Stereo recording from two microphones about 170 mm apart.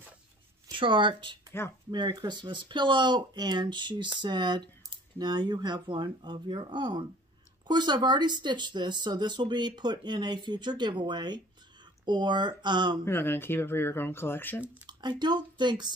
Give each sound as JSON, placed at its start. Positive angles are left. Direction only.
{"t": 0.7, "sound": "speech", "side_deg": -30}
{"t": 13.0, "sound": "speech", "side_deg": 15}
{"t": 14.9, "sound": "speech", "side_deg": -25}